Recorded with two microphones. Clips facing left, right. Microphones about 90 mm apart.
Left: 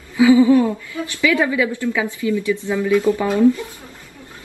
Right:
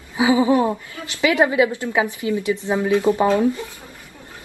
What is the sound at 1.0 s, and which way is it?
A woman's voice, 20° right (ahead or behind).